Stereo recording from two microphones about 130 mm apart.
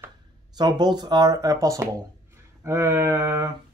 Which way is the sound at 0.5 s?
35° right (ahead or behind).